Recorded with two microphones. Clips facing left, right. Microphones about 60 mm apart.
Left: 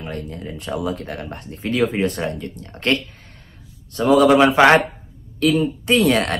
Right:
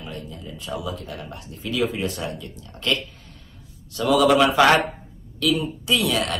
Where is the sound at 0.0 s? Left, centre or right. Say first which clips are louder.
Left 6 dB; left.